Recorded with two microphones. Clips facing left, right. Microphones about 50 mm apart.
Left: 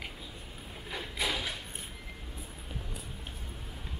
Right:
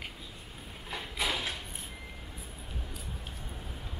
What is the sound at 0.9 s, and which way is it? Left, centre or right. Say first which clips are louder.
Mechanisms: even; centre.